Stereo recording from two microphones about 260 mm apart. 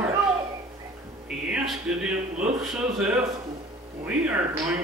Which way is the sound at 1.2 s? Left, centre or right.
Centre.